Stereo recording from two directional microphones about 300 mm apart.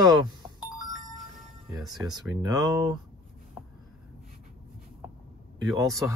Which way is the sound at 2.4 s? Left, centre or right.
Centre.